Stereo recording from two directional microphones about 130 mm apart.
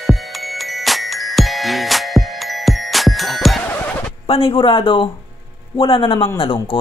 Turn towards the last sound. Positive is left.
turn(degrees=45)  # may be behind; listen again after turning